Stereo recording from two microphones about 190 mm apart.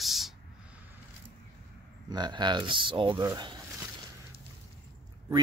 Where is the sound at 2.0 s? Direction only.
20° right (ahead or behind).